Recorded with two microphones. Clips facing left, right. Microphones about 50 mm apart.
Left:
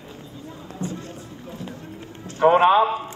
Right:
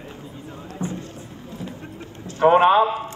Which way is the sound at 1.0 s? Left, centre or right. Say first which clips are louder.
Left 1 dB; left.